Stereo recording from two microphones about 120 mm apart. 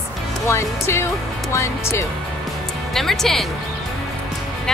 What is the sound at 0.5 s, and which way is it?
Speech, 20° left (ahead or behind).